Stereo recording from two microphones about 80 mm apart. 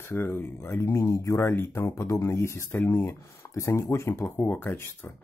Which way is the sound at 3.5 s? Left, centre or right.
Left.